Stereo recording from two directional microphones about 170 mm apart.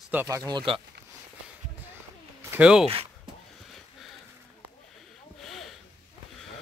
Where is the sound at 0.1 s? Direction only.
15° right (ahead or behind).